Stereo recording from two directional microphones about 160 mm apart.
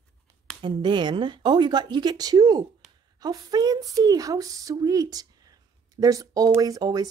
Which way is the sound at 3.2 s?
25° right (ahead or behind).